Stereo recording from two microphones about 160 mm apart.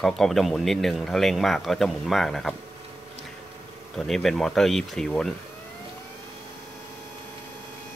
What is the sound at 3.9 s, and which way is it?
Speech, centre (ahead or behind).